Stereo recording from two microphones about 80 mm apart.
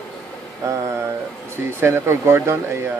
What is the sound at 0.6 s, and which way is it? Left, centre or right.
Speech, right.